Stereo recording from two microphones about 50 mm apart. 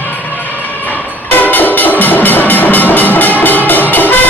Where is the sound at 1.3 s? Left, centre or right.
Left.